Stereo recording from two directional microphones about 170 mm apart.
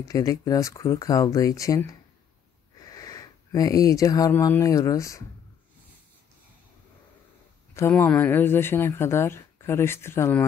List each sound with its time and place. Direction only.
0.0 s speech: 20° left (ahead or behind)
7.7 s speech: 15° left (ahead or behind)